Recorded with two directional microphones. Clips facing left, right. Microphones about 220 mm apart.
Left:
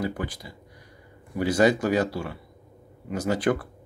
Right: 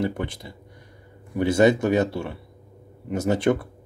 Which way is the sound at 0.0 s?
25° right (ahead or behind).